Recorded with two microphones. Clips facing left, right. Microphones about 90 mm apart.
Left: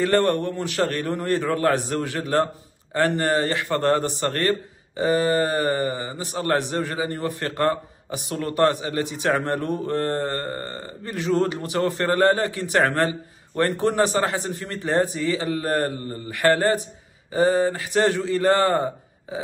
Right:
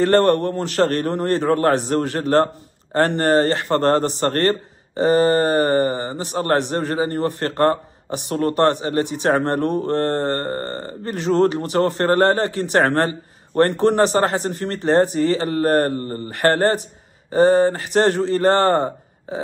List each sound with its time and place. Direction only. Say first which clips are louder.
0.0 s speech: right 5 dB; 45° right (ahead or behind)
8.5 s speech: right 1 dB; 30° right (ahead or behind)